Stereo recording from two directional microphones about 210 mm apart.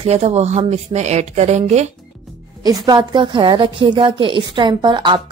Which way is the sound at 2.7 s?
15° right (ahead or behind).